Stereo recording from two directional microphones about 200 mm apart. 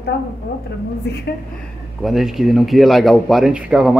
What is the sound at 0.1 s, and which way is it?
A woman's voice, 55° left (ahead or behind).